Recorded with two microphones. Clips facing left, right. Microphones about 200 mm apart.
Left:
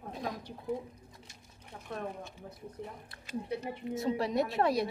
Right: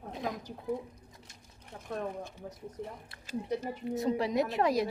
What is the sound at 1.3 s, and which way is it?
Sewing machine, 50° right (ahead or behind).